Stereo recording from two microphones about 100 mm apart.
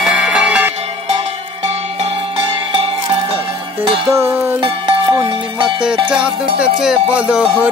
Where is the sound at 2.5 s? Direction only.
60° right (ahead or behind).